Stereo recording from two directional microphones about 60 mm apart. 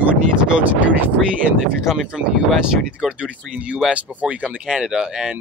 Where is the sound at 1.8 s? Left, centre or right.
Centre.